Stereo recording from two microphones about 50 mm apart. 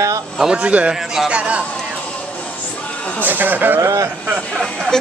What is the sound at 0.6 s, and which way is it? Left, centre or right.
A man's voice, right.